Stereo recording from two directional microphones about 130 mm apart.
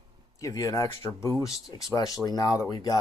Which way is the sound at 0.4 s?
25° left (ahead or behind).